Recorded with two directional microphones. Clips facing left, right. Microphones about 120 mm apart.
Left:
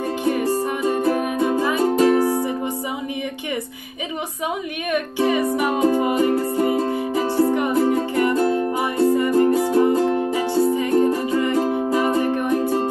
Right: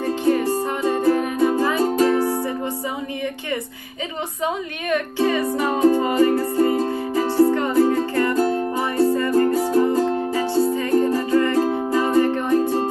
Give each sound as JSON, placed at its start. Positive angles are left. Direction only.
{"t": 0.2, "sound": "music", "side_deg": 15}
{"t": 4.9, "sound": "music", "side_deg": 15}